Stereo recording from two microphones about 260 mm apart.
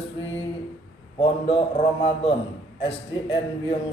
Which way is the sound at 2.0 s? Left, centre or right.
Left.